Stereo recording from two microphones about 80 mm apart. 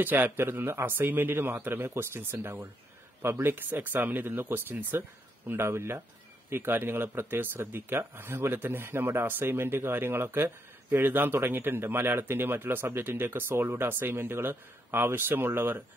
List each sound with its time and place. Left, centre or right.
0.0 s speech: right